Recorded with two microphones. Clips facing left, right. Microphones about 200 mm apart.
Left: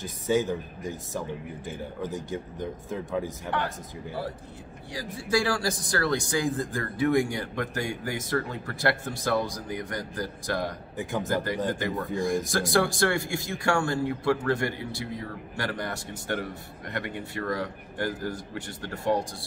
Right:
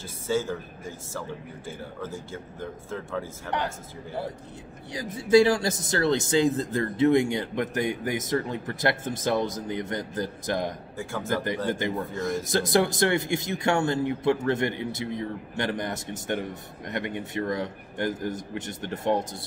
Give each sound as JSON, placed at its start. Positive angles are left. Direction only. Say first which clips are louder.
{"t": 0.0, "sound": "a man's voice", "louder": "left 2 dB", "side_deg": 15}
{"t": 4.9, "sound": "speech", "louder": "right 8 dB", "side_deg": -20}
{"t": 11.0, "sound": "speech", "louder": "left 4 dB", "side_deg": 15}
{"t": 11.8, "sound": "speech", "louder": "even", "side_deg": -15}